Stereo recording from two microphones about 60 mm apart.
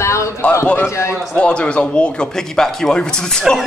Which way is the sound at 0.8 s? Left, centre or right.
Left.